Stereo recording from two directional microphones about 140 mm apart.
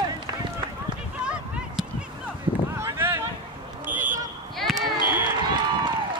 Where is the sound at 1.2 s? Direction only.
5° right (ahead or behind).